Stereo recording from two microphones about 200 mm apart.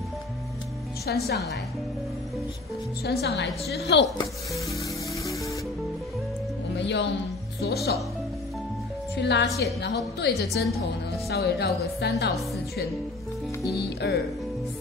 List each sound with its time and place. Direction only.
1.1 s a woman's voice: 55° left (ahead or behind)
3.0 s a woman's voice: 55° left (ahead or behind)
4.6 s music: 15° left (ahead or behind)
6.7 s speech: 60° left (ahead or behind)
9.2 s a woman's voice: 55° left (ahead or behind)
13.7 s a woman's voice: 55° left (ahead or behind)